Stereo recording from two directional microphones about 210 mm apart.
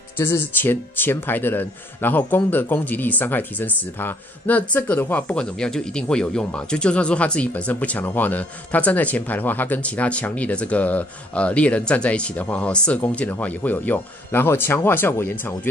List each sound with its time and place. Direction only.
0.2 s speech: 10° left (ahead or behind)